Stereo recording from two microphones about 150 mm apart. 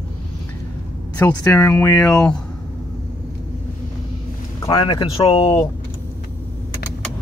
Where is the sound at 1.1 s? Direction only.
20° left (ahead or behind).